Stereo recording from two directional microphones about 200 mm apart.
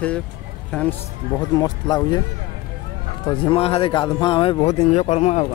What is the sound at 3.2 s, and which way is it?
A man's voice, 25° left (ahead or behind).